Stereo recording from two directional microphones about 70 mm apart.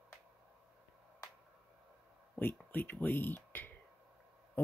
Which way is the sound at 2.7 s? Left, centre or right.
Left.